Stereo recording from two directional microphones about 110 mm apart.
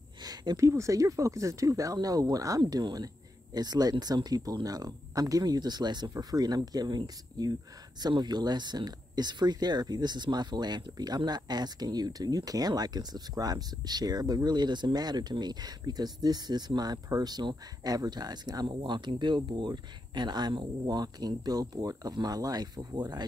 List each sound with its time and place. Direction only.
0.2 s speech: 40° right (ahead or behind)